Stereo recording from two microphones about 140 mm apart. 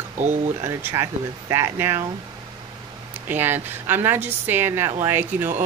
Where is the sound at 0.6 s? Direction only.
20° right (ahead or behind).